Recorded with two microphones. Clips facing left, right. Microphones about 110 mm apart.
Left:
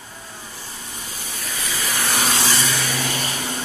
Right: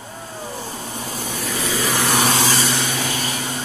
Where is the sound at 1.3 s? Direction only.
75° right (ahead or behind).